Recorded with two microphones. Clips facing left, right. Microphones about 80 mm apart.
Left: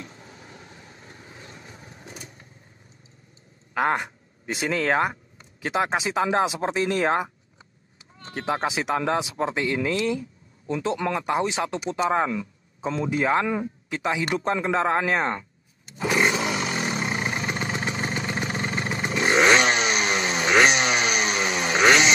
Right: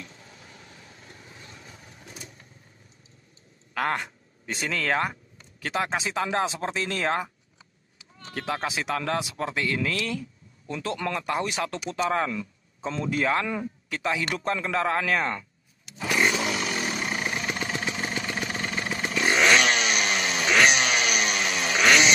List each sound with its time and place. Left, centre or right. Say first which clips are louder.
0.0 s vehicle: left 3 dB; left
3.7 s speech: left 4 dB; centre
8.4 s speech: left 4 dB; left
16.3 s roar: left 2 dB; centre
16.7 s vehicle: left 2 dB; centre
17.0 s vehicle: left 2 dB; left
18.1 s motorcycle: left 2 dB; centre
20.4 s chainsaw: left 2 dB; left